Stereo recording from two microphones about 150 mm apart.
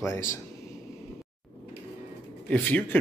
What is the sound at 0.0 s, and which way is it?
Speech, 15° left (ahead or behind).